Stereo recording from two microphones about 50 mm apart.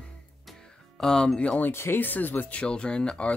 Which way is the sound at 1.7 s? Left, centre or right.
Left.